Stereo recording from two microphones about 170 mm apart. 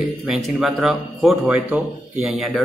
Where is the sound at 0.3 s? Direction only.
Centre (ahead or behind).